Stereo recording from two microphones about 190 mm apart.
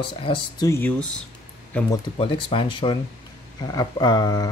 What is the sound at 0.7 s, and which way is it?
Speech, 10° left (ahead or behind).